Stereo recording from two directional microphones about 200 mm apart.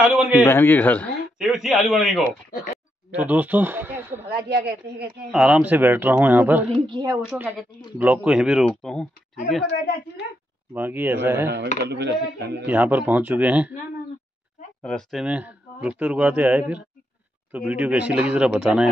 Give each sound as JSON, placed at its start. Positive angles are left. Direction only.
{"t": 0.1, "sound": "a man's voice", "side_deg": -5}
{"t": 0.5, "sound": "speech", "side_deg": 10}
{"t": 4.5, "sound": "a woman's voice", "side_deg": -55}
{"t": 5.3, "sound": "speech", "side_deg": -5}
{"t": 6.7, "sound": "a woman's voice", "side_deg": -20}
{"t": 7.3, "sound": "speech", "side_deg": -10}
{"t": 9.7, "sound": "a woman's voice", "side_deg": 60}
{"t": 10.7, "sound": "speech", "side_deg": -10}
{"t": 11.9, "sound": "speech", "side_deg": -55}
{"t": 12.6, "sound": "speech", "side_deg": -10}
{"t": 14.8, "sound": "speech", "side_deg": 5}